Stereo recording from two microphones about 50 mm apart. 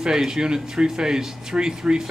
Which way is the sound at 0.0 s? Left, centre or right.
Centre.